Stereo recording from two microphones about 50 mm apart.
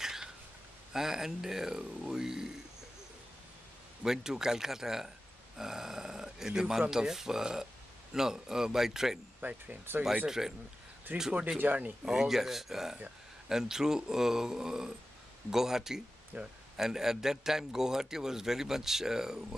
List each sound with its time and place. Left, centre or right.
0.0 s a sound: centre
0.9 s a man's voice: centre
4.0 s a man's voice: centre
9.4 s speech: right
10.2 s a man's voice: centre
11.1 s speech: right
12.0 s a man's voice: centre
16.3 s speech: right
16.7 s a man's voice: centre